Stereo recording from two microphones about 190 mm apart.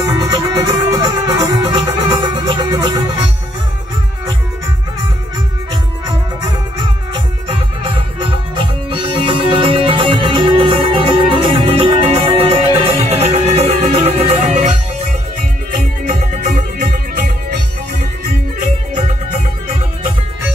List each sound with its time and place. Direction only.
0.0 s music: 20° right (ahead or behind)
8.2 s music: 25° right (ahead or behind)